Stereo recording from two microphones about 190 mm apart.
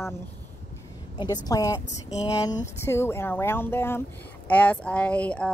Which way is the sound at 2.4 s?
15° left (ahead or behind).